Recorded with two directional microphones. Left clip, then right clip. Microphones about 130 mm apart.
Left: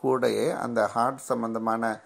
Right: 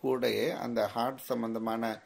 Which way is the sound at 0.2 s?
20° left (ahead or behind).